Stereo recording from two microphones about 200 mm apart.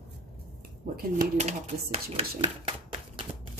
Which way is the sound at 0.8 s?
40° right (ahead or behind).